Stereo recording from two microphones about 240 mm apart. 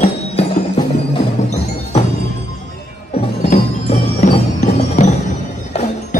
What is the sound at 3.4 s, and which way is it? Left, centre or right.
Tubular bells, left.